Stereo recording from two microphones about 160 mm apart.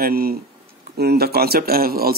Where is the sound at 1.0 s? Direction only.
80° right.